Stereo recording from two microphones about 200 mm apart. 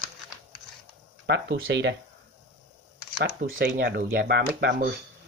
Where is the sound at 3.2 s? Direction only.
55° right (ahead or behind).